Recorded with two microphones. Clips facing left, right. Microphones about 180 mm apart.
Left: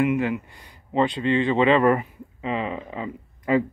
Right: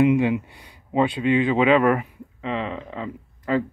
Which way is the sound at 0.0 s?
15° right (ahead or behind).